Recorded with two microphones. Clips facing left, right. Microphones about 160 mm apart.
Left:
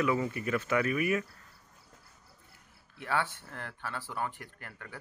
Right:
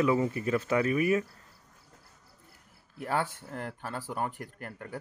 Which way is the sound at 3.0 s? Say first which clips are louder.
Right 2 dB; 40° right (ahead or behind).